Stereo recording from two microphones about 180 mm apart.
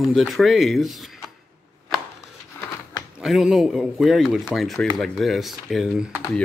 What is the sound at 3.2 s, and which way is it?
Speech, centre (ahead or behind).